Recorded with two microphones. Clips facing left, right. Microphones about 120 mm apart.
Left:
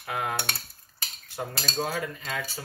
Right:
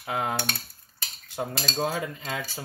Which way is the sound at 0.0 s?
20° right (ahead or behind).